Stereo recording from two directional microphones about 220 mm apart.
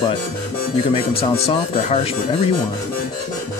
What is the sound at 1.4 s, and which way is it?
Speech, 30° left (ahead or behind).